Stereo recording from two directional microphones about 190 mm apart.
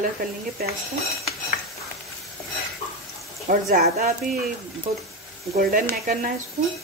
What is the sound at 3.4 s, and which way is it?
Speech, 50° right (ahead or behind).